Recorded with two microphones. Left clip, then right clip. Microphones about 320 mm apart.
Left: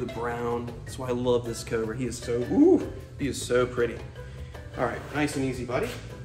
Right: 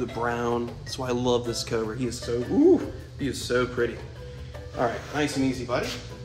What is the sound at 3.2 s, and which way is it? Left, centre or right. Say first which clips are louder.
Speech: left 1 dB; centre.